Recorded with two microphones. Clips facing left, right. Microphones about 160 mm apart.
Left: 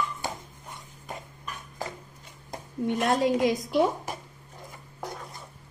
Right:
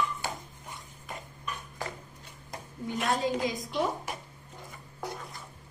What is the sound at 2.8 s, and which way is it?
Speech, 70° left (ahead or behind).